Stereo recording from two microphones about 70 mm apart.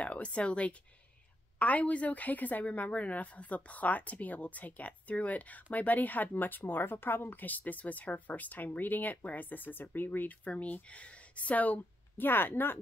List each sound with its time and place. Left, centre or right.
0.0 s a woman's voice: centre